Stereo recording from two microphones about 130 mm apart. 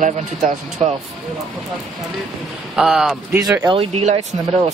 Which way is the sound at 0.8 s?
45° right (ahead or behind).